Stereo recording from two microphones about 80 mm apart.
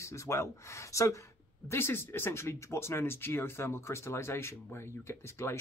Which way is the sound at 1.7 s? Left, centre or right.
Left.